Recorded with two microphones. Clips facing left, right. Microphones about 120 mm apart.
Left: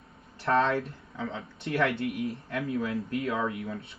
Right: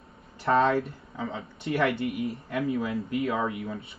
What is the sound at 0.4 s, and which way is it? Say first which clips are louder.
Speech: right 3 dB; centre (ahead or behind).